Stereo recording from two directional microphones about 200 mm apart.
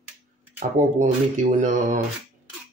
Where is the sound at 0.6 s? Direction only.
35° right (ahead or behind).